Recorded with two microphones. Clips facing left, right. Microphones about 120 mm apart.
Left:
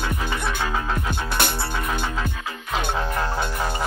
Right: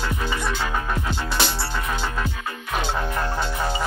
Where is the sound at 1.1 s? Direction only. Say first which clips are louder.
Even; 55° left (ahead or behind).